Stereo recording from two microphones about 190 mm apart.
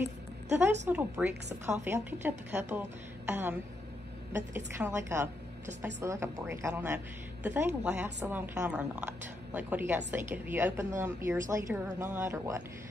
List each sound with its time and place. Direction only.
0.0 s music: 10° right (ahead or behind)
0.8 s a woman's voice: 10° right (ahead or behind)
4.6 s a woman's voice: 10° right (ahead or behind)